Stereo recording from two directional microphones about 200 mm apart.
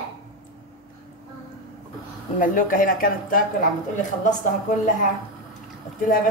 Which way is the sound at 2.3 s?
40° left (ahead or behind).